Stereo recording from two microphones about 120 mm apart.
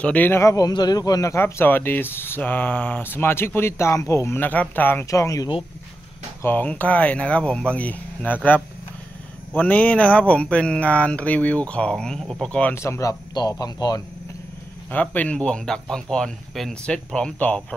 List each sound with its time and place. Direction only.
0.0 s speech: 15° left (ahead or behind)
5.1 s speech: 25° left (ahead or behind)
6.4 s speech: 15° left (ahead or behind)
9.5 s speech: 15° left (ahead or behind)
12.7 s speech: 25° left (ahead or behind)
13.3 s a man's voice: 35° left (ahead or behind)
14.9 s speech: 15° left (ahead or behind)